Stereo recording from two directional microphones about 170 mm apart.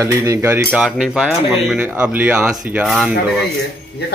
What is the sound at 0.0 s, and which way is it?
Speech, 15° right (ahead or behind).